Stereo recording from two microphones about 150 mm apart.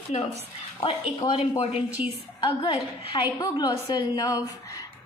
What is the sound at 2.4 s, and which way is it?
A woman's voice, 35° left (ahead or behind).